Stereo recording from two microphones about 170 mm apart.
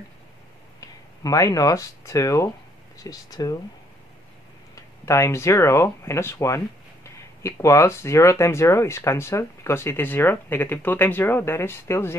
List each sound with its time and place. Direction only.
0.7 s speech: 20° left (ahead or behind)
5.0 s speech: 15° left (ahead or behind)